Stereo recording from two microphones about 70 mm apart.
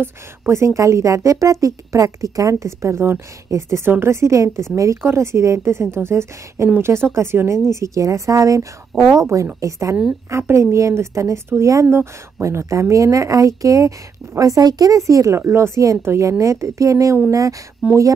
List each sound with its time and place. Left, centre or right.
0.0 s a woman's voice: right
7.7 s speech: right
17.8 s speech: centre